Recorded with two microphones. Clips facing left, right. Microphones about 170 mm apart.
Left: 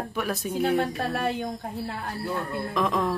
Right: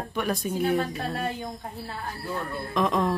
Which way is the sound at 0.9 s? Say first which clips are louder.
Left 3 dB; 70° left (ahead or behind).